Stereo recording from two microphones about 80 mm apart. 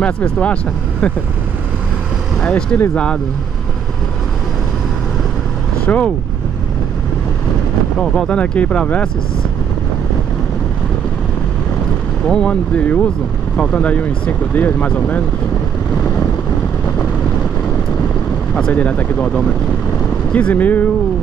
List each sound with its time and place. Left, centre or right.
0.0 s speech: centre
2.7 s speech: centre
5.9 s speech: centre
8.0 s speech: centre
12.3 s speech: centre
18.7 s speech: centre